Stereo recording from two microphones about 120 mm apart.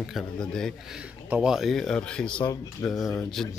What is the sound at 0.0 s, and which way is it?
Speech, centre (ahead or behind).